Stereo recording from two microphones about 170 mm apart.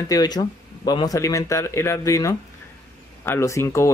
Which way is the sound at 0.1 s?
25° left (ahead or behind).